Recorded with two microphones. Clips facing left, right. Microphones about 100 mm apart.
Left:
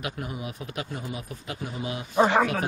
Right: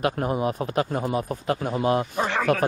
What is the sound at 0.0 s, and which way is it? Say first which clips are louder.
Speech: right 10 dB; 45° right (ahead or behind).